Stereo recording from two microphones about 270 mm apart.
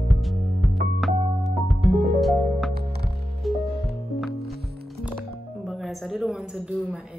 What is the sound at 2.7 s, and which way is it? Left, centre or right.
Music, right.